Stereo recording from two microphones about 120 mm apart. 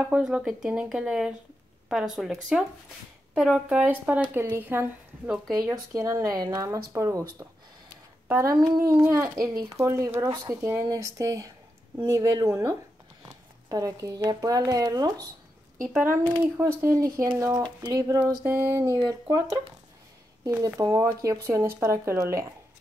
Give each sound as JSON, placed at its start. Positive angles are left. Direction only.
{"t": 0.0, "sound": "speech", "side_deg": -10}
{"t": 3.3, "sound": "speech", "side_deg": 0}
{"t": 3.6, "sound": "a woman's voice", "side_deg": -15}
{"t": 5.5, "sound": "speech", "side_deg": -30}
{"t": 15.9, "sound": "speech", "side_deg": -20}
{"t": 20.7, "sound": "speech", "side_deg": -25}